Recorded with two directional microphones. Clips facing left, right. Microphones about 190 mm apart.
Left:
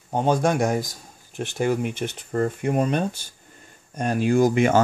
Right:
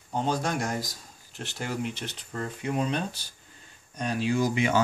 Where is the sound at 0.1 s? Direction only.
55° left (ahead or behind).